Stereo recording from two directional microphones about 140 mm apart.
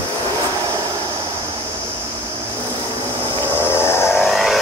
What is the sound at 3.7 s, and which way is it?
Vehicle, 15° left (ahead or behind).